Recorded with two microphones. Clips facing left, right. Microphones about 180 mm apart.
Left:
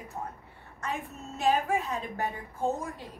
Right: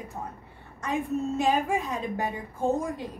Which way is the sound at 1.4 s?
15° right (ahead or behind).